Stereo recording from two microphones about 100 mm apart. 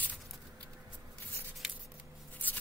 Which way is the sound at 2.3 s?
15° left (ahead or behind).